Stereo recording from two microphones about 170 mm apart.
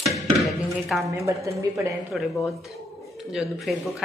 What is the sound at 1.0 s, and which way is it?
Speech, 15° right (ahead or behind).